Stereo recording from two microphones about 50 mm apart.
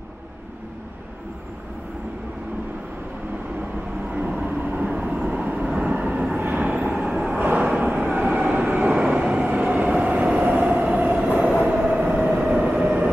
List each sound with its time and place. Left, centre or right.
4.1 s vehicle: right
5.7 s vehicle: right
5.9 s vehicle: right
7.6 s vehicle: centre
7.9 s vehicle: right
9.0 s vehicle: centre
9.5 s train: right
11.2 s train: centre
11.9 s train: right
12.4 s train: right
12.8 s vehicle: right